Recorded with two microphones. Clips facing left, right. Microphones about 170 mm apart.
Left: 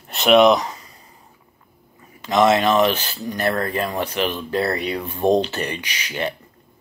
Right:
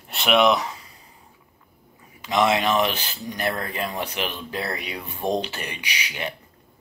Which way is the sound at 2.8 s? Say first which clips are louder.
Left 6 dB; 15° right (ahead or behind).